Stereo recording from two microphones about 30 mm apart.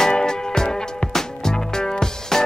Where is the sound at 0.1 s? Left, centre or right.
Left.